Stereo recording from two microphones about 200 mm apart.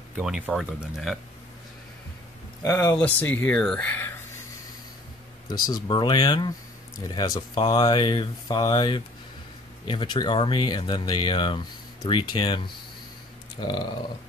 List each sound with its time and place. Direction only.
0.2 s speech: centre (ahead or behind)
2.6 s speech: 10° left (ahead or behind)
5.9 s speech: 25° left (ahead or behind)